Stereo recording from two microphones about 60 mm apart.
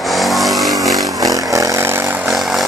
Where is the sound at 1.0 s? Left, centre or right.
Right.